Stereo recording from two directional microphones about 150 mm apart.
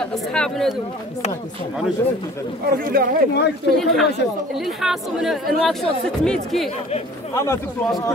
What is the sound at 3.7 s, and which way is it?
Speech, 5° left (ahead or behind).